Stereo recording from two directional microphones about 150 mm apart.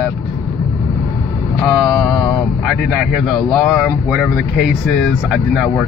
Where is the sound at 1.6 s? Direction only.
Centre (ahead or behind).